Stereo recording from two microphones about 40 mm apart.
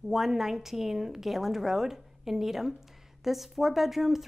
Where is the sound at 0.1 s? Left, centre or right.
Centre.